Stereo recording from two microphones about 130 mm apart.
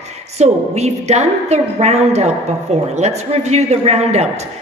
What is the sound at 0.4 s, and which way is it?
A woman's voice, 55° right (ahead or behind).